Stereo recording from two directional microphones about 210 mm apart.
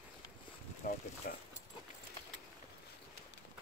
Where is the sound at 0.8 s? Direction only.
45° left (ahead or behind).